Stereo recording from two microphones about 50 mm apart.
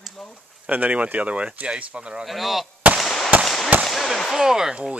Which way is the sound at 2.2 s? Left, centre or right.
Centre.